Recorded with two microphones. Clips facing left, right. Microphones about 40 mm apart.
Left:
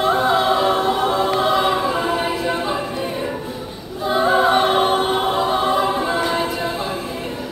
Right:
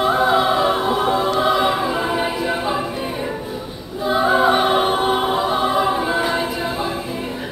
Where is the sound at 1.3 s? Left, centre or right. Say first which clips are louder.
Even; centre.